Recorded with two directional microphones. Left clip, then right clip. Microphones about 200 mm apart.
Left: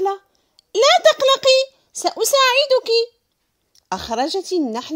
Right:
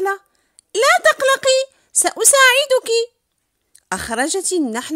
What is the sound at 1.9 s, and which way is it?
A woman's voice, 25° right (ahead or behind).